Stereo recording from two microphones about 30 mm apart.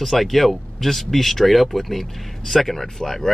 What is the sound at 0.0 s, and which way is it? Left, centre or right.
Speech, centre.